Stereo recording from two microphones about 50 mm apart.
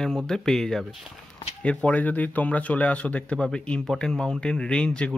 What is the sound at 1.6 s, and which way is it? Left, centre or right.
Speech, left.